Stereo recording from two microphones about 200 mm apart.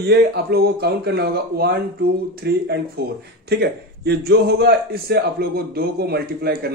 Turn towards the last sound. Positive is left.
turn(degrees=-50)  # may be behind; listen again after turning